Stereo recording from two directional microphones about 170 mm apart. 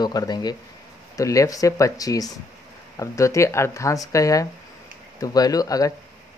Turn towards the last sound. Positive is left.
turn(degrees=20)  # may be behind; listen again after turning